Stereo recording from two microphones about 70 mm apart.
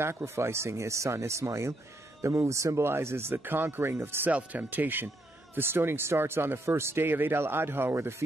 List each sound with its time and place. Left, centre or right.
0.0 s speech: right
4.3 s speech: right